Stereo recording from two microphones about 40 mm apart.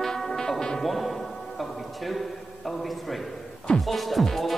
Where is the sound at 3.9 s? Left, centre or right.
Centre.